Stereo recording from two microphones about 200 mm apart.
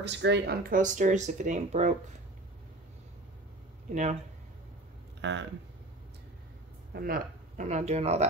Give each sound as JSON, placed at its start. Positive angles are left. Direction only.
{"t": 0.0, "sound": "speech", "side_deg": -60}
{"t": 3.9, "sound": "speech", "side_deg": -35}
{"t": 5.2, "sound": "speech", "side_deg": -65}
{"t": 6.9, "sound": "speech", "side_deg": -45}